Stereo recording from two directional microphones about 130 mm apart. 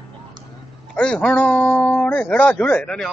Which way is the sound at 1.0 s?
10° left (ahead or behind).